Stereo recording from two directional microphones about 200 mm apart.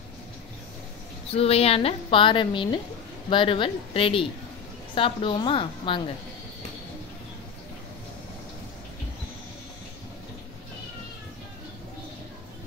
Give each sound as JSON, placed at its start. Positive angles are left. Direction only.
{"t": 1.3, "sound": "a woman's voice", "side_deg": 30}